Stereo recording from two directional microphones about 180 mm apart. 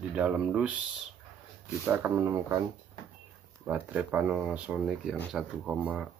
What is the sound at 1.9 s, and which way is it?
Speech, 10° right (ahead or behind).